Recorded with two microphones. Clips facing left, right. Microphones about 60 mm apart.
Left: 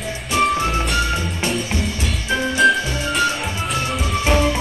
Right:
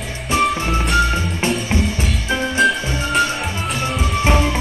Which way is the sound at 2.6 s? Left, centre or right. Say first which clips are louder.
Left 2 dB; centre.